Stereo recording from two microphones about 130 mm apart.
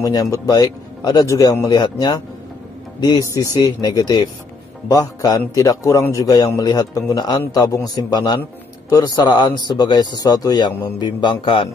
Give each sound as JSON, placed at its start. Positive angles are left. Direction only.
{"t": 0.0, "sound": "a man's voice", "side_deg": 25}